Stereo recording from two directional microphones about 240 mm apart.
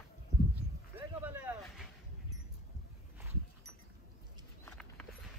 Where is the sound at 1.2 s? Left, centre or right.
Centre.